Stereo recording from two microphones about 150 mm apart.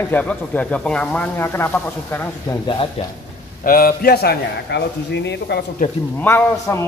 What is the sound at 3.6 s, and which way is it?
Speech, 75° left (ahead or behind).